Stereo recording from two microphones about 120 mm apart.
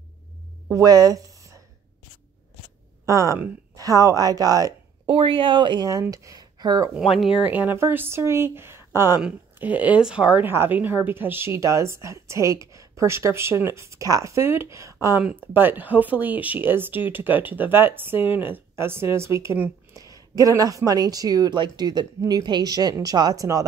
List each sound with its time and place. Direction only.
0.7 s a sound: 30° right (ahead or behind)
3.1 s speech: 25° right (ahead or behind)
5.0 s speech: 50° right (ahead or behind)
5.9 s speech: 30° right (ahead or behind)
6.9 s speech: 5° right (ahead or behind)
7.4 s a woman's voice: 15° right (ahead or behind)
19.9 s a sound: 30° right (ahead or behind)
20.3 s speech: 30° right (ahead or behind)